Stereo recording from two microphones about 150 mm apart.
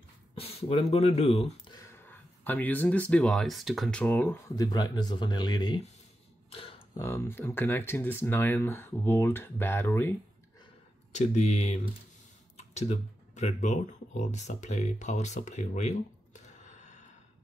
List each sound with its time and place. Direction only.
0.4 s speech: 40° left (ahead or behind)
1.8 s speech: 15° left (ahead or behind)
6.5 s a sound: 40° left (ahead or behind)
7.0 s speech: 15° left (ahead or behind)
11.1 s speech: 50° left (ahead or behind)